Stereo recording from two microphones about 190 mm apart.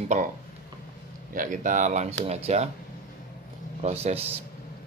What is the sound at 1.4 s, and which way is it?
Speech, 40° right (ahead or behind).